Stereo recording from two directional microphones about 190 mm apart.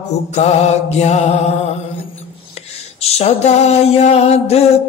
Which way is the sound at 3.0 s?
35° left (ahead or behind).